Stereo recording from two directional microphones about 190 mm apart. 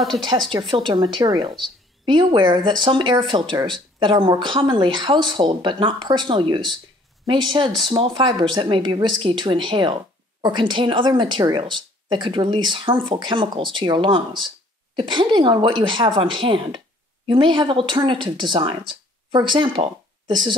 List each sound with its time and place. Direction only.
0.5 s speech: 25° right (ahead or behind)